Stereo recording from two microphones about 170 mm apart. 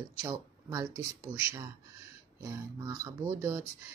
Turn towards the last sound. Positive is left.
turn(degrees=-15)  # may be behind; listen again after turning